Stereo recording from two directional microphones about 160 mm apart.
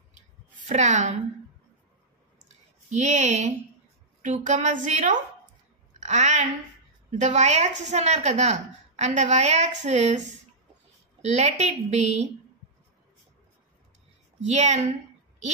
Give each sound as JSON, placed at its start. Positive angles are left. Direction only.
{"t": 0.6, "sound": "a woman's voice", "side_deg": -45}
{"t": 2.9, "sound": "a woman's voice", "side_deg": -45}
{"t": 11.2, "sound": "a woman's voice", "side_deg": -45}
{"t": 14.4, "sound": "a woman's voice", "side_deg": -45}